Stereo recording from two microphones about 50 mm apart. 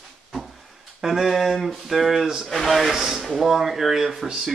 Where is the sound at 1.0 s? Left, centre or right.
Centre.